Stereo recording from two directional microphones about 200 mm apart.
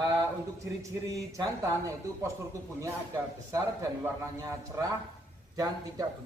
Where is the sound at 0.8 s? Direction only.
15° right (ahead or behind).